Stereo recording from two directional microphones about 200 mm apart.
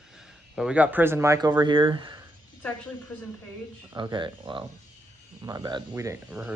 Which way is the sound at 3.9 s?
20° right (ahead or behind).